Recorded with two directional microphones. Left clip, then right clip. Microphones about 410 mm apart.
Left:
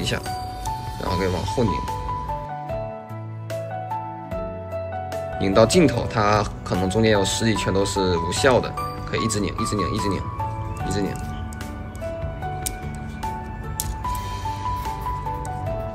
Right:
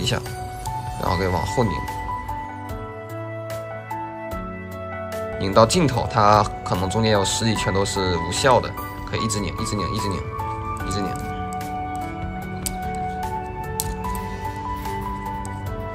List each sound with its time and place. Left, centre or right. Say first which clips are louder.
1.0 s speech: right 2 dB; centre
5.4 s speech: even; centre